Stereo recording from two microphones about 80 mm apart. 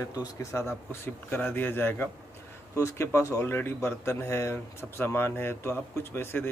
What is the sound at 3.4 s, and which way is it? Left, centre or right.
Speech, left.